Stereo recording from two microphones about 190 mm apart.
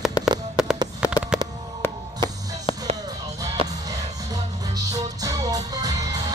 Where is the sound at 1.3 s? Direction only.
5° right (ahead or behind).